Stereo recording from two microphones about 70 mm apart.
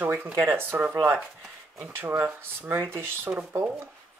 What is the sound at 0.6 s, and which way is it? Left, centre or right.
Speech, right.